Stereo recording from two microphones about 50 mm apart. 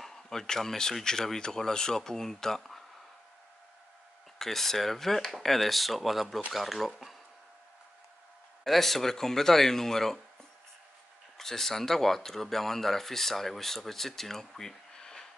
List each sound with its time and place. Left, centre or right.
0.0 s speech: centre
4.4 s speech: centre
8.6 s speech: centre
11.3 s speech: centre